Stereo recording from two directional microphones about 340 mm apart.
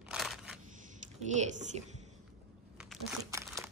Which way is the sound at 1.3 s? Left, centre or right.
Centre.